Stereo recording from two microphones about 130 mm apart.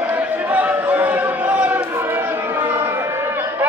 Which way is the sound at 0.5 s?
10° right (ahead or behind).